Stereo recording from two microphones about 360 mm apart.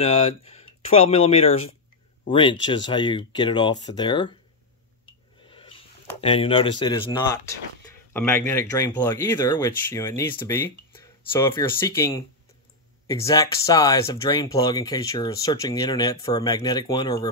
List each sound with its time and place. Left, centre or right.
0.0 s speech: centre
5.5 s a sound: centre
6.2 s speech: centre